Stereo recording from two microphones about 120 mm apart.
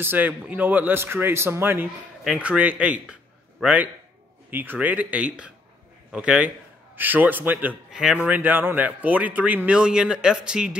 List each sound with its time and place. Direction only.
0.0 s speech: 15° right (ahead or behind)